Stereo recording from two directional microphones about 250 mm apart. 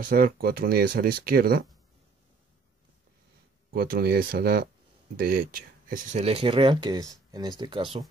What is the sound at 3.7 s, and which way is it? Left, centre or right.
Speech, right.